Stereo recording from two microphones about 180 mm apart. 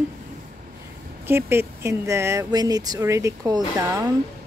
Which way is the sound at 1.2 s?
15° right (ahead or behind).